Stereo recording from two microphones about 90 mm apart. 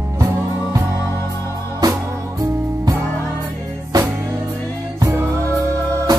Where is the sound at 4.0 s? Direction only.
30° right (ahead or behind).